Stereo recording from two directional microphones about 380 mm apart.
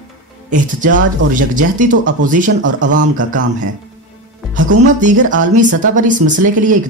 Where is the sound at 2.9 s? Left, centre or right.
Right.